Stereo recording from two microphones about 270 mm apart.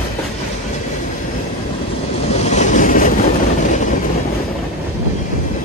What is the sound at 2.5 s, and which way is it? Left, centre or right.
Train, left.